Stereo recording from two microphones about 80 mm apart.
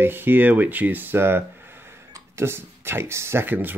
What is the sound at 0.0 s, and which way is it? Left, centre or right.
Speech, right.